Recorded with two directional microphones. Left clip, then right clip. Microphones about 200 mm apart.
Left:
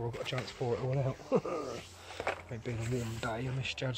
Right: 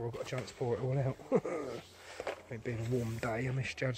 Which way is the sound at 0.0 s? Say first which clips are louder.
Left 2 dB; 10° right (ahead or behind).